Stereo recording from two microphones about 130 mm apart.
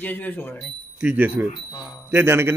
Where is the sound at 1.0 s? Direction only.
15° right (ahead or behind).